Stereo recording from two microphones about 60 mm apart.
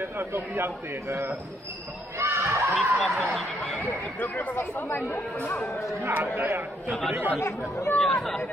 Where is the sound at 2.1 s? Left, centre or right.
Right.